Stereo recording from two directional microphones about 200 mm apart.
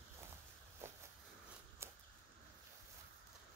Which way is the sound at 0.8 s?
10° right (ahead or behind).